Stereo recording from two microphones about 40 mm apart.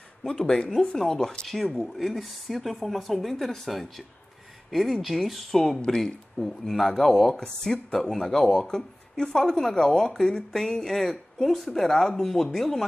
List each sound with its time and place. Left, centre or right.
0.2 s speech: centre
1.6 s speech: centre
7.3 s speech: centre